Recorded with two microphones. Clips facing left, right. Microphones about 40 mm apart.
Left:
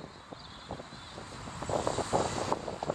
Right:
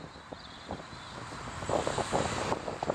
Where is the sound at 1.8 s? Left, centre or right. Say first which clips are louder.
Even; right.